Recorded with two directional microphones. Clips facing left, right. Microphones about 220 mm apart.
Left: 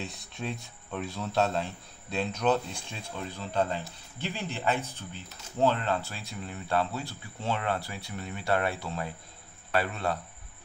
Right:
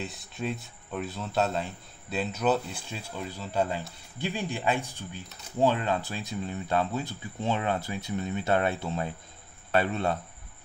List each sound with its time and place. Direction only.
0.0 s a man's voice: centre (ahead or behind); by 10.1 s 25° right (ahead or behind)